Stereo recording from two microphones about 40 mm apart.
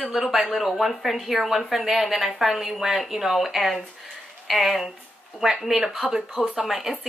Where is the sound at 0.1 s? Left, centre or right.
Centre.